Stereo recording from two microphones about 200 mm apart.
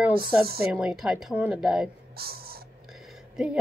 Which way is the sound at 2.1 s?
50° right (ahead or behind).